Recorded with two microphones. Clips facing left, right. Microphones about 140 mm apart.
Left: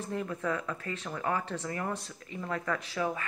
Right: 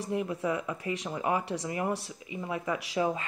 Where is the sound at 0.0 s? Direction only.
10° right (ahead or behind).